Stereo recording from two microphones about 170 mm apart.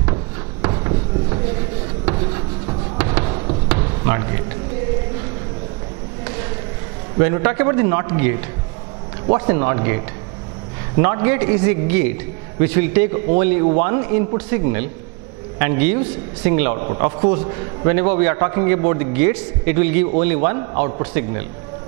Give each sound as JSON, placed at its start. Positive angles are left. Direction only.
{"t": 0.0, "sound": "a sound", "side_deg": -25}
{"t": 3.0, "sound": "basketball bounce", "side_deg": -15}
{"t": 7.2, "sound": "a man's voice", "side_deg": -20}